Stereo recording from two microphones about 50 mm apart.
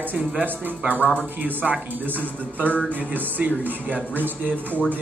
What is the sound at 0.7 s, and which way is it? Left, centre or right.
Speech, right.